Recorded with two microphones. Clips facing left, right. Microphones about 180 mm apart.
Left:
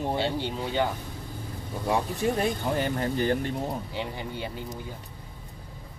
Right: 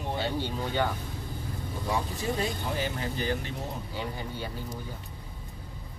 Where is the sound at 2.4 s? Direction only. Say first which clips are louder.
Left 4 dB; 50° left (ahead or behind).